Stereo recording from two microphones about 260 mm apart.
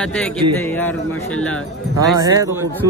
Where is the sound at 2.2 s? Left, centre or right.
Centre.